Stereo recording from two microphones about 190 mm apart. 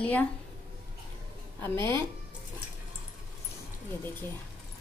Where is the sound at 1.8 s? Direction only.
25° right (ahead or behind).